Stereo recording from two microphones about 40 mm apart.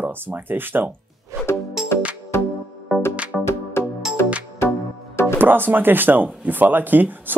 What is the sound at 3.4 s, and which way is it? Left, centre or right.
Music, left.